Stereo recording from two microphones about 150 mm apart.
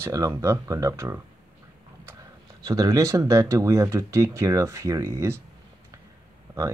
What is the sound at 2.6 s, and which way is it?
Speech, 25° right (ahead or behind).